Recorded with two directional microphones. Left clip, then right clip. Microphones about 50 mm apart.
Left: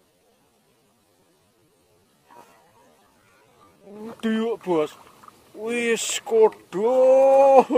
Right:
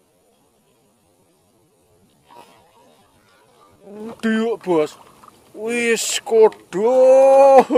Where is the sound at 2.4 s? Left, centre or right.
Centre.